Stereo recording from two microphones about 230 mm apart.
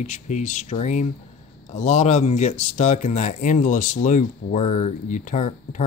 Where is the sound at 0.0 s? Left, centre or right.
Left.